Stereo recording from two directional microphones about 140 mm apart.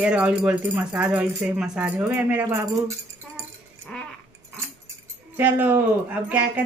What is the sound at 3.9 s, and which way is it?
Dog, 5° left (ahead or behind).